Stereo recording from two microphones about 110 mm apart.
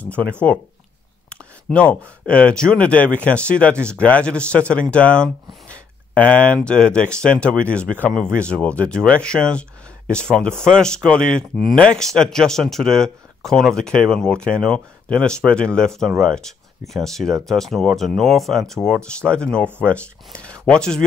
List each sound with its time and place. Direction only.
1.3 s speech: 10° left (ahead or behind)